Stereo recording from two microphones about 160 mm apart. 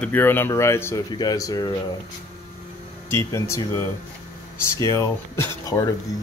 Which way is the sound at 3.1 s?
20° left (ahead or behind).